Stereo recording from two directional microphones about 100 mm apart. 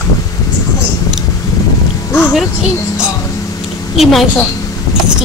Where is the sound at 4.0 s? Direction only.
Centre (ahead or behind).